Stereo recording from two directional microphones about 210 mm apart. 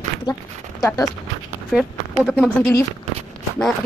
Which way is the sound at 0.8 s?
15° left (ahead or behind).